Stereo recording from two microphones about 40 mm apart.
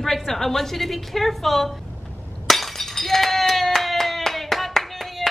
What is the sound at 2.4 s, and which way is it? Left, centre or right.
Breaking, centre.